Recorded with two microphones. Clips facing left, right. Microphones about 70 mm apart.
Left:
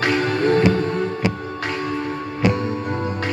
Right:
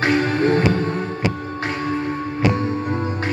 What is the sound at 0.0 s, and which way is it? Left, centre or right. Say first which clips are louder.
Music: right 1 dB; right.